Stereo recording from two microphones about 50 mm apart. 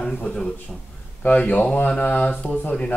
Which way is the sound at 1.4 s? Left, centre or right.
Left.